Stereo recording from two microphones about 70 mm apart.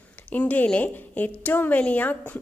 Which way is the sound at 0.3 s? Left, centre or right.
Left.